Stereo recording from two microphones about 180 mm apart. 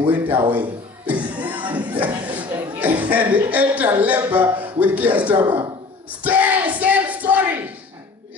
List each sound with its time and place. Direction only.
0.1 s a sound: 10° right (ahead or behind)
2.5 s a woman's voice: 10° right (ahead or behind)
5.3 s speech: 25° right (ahead or behind)
6.2 s speech: 10° right (ahead or behind)